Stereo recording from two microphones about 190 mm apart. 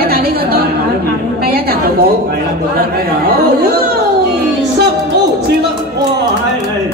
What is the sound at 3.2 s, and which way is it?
Chatter, 55° right (ahead or behind).